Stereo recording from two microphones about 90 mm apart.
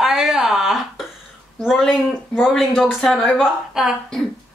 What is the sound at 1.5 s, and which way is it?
Speech, 5° left (ahead or behind).